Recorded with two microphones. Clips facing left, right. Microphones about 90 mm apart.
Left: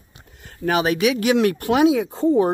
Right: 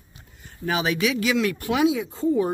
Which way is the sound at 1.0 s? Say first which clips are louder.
Left 5 dB; 60° left (ahead or behind).